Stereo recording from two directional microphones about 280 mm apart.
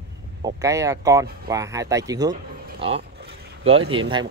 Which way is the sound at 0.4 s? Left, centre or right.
Centre.